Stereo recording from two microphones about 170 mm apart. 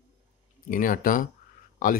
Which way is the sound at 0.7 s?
50° left (ahead or behind).